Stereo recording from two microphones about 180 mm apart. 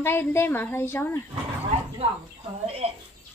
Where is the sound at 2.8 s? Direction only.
35° right (ahead or behind).